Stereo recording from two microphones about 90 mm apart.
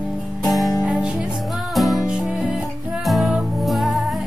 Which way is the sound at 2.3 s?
10° right (ahead or behind).